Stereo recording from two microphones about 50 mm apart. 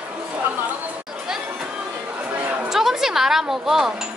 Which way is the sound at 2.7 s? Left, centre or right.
Centre.